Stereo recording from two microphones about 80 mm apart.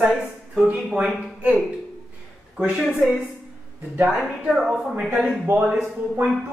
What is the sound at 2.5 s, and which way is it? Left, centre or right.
A woman's voice, centre.